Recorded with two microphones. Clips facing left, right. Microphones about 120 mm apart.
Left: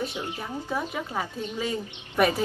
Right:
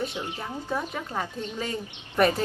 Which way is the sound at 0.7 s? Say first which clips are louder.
Even; 5° left (ahead or behind).